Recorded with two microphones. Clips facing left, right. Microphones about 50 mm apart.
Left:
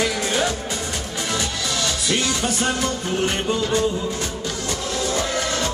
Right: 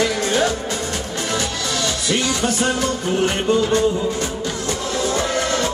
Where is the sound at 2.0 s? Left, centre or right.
Centre.